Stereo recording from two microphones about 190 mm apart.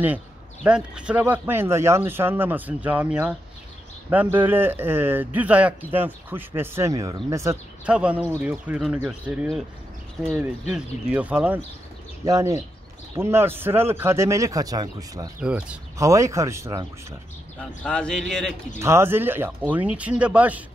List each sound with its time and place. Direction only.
0.7 s speech: 5° right (ahead or behind)
10.7 s speech: 10° right (ahead or behind)
15.4 s speech: 5° right (ahead or behind)
17.6 s speech: 5° left (ahead or behind)
18.8 s speech: 15° right (ahead or behind)